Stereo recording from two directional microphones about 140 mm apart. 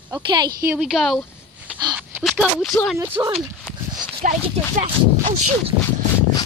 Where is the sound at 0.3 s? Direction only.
30° right (ahead or behind).